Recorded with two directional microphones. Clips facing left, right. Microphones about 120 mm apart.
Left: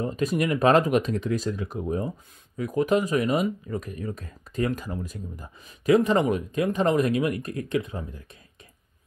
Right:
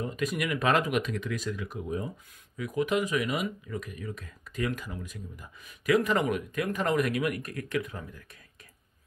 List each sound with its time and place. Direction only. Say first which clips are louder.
0.0 s speech: left 6 dB; 35° left (ahead or behind)